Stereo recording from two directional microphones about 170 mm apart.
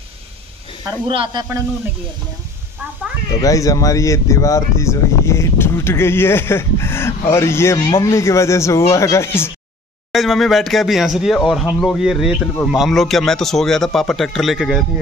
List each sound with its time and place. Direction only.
0.8 s speech: 30° right (ahead or behind)
3.3 s speech: 20° left (ahead or behind)
10.1 s speech: centre (ahead or behind)